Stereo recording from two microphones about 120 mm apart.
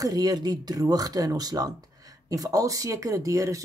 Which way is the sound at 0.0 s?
30° right (ahead or behind).